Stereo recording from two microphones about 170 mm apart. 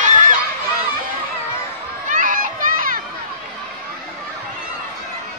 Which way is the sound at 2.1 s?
50° right (ahead or behind).